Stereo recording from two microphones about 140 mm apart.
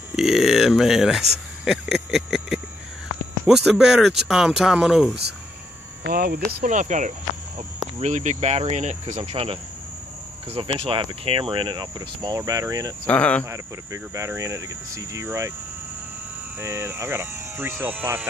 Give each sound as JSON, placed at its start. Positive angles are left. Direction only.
{"t": 0.1, "sound": "speech", "side_deg": 0}
{"t": 6.0, "sound": "speech", "side_deg": -90}
{"t": 9.3, "sound": "speech", "side_deg": -40}
{"t": 13.0, "sound": "speech", "side_deg": 10}
{"t": 13.5, "sound": "speech", "side_deg": -20}
{"t": 16.5, "sound": "speech", "side_deg": -20}